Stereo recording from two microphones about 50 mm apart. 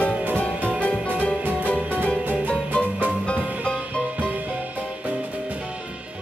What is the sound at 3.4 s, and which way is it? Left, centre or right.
Music, right.